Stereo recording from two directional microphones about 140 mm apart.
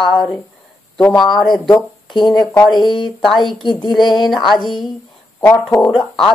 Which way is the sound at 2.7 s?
35° left (ahead or behind).